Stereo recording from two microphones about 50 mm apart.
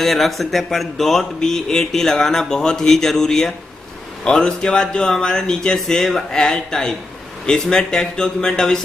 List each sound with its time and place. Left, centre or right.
0.0 s speech: centre